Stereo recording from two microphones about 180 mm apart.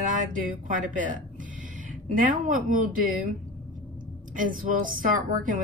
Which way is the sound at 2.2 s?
45° right (ahead or behind).